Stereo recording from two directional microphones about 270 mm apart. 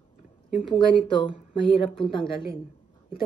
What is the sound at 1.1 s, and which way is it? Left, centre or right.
Speech, centre.